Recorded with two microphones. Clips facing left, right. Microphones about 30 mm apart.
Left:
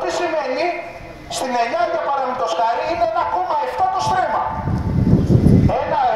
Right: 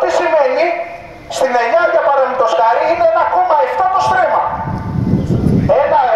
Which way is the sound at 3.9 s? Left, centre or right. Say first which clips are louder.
Right 6 dB; centre.